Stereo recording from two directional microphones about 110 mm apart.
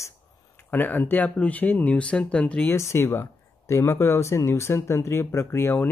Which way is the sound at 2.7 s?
25° left (ahead or behind).